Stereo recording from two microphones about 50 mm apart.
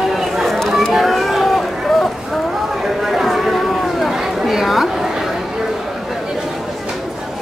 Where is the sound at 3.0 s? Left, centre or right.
Centre.